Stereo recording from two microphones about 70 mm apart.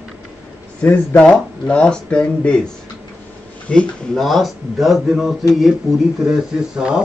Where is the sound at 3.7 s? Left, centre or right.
Centre.